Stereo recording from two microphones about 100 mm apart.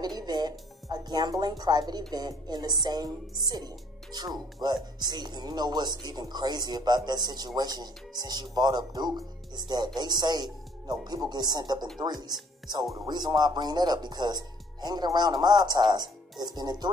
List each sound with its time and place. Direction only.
0.0 s speech: 45° right (ahead or behind)